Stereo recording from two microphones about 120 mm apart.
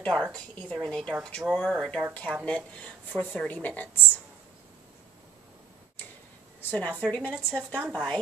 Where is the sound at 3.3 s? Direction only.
10° left (ahead or behind).